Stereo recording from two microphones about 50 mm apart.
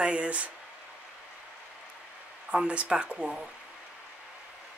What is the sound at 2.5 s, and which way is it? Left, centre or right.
Speech, right.